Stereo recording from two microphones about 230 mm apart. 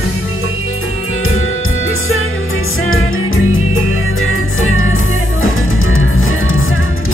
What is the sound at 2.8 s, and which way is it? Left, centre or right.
Music, left.